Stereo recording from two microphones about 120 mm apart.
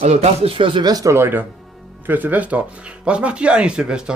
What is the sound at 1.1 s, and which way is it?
Speech, 20° right (ahead or behind).